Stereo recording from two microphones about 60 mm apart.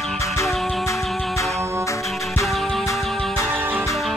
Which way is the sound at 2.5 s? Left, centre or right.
Centre.